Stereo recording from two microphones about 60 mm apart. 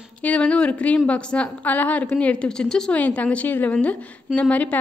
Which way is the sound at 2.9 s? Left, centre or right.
Left.